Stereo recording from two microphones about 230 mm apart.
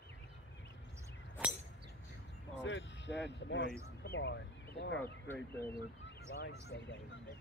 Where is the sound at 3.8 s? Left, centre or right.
Left.